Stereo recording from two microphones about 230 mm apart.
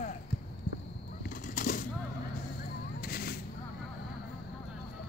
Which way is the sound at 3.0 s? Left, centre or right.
Left.